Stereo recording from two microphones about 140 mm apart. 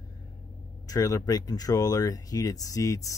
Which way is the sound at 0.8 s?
25° left (ahead or behind).